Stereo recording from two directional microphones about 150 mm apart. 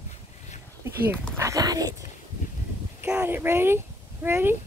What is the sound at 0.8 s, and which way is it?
Speech, 15° right (ahead or behind).